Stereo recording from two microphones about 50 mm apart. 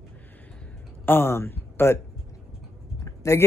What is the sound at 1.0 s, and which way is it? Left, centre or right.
Speech, left.